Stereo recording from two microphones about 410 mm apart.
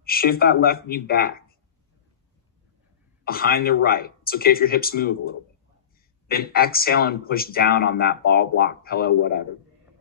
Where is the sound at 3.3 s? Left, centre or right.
Left.